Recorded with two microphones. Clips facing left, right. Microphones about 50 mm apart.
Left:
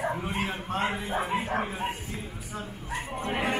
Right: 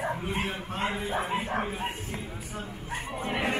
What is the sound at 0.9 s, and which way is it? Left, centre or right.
Speech, left.